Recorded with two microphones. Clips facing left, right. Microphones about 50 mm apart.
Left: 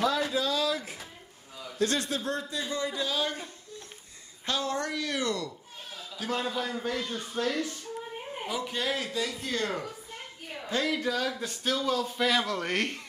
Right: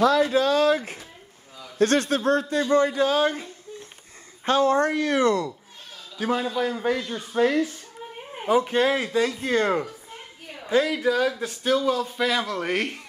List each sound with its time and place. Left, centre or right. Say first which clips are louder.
0.0 s a sound: right 8 dB; right
0.3 s a sound: right 9 dB; right
1.8 s speech: right 8 dB; right
4.5 s speech: right 11 dB; right
6.3 s a man's voice: right 5 dB; centre
6.6 s a man's voice: right 8 dB; right
7.0 s a man's voice: right 3 dB; centre
7.3 s a man's voice: right 9 dB; right
8.5 s speech: right 12 dB; right
10.7 s a man's voice: right 8 dB; centre